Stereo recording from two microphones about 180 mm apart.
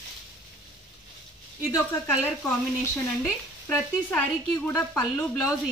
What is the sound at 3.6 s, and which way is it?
Speech, 10° left (ahead or behind).